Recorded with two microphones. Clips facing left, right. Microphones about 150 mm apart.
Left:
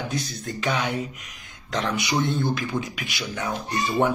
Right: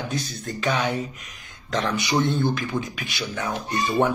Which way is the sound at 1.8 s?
25° right (ahead or behind).